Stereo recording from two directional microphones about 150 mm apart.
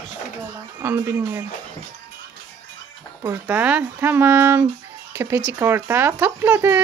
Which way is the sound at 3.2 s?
15° right (ahead or behind).